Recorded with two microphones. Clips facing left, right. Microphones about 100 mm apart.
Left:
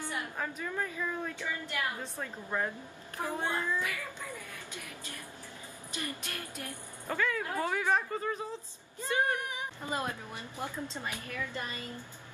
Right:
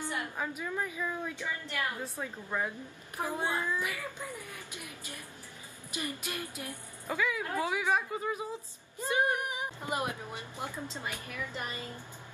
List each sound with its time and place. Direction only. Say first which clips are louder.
0.0 s a woman's voice: right 1 dB; 15° right (ahead or behind)